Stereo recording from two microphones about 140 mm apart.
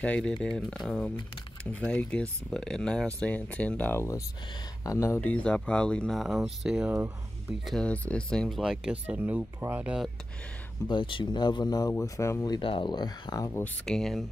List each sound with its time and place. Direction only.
0.0 s speech: 5° left (ahead or behind)
7.6 s speech: 5° left (ahead or behind); by 10.0 s 10° right (ahead or behind)
10.9 s speech: 35° left (ahead or behind)
12.5 s speech: 35° left (ahead or behind)
13.8 s speech: 5° left (ahead or behind)